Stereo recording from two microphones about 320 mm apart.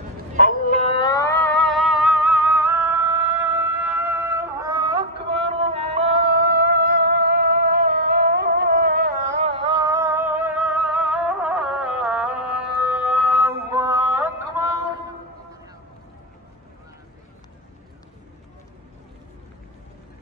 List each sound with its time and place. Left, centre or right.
0.4 s music: left; by 5.0 s centre
5.7 s singing: centre
6.0 s music: right; by 13.6 s centre
13.7 s mantra: centre